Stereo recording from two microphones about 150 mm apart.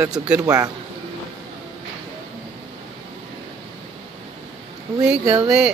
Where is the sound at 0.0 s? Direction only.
5° right (ahead or behind).